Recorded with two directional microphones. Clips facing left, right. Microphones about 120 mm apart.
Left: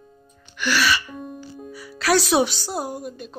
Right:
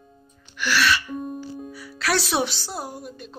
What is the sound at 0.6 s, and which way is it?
Music, centre (ahead or behind).